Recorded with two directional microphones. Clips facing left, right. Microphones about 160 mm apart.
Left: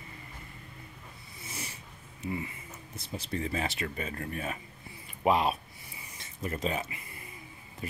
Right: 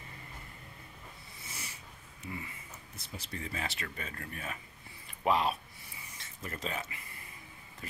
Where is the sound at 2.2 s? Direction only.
20° left (ahead or behind).